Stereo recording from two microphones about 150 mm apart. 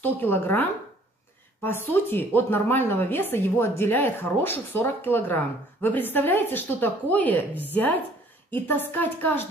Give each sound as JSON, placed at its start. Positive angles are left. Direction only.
{"t": 0.0, "sound": "speech", "side_deg": 15}